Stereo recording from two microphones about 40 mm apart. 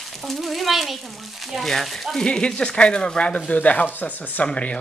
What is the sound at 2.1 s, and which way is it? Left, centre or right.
Speech, centre.